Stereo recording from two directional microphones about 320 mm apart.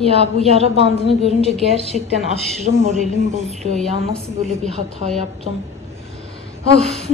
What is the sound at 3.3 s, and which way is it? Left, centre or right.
Speech, centre.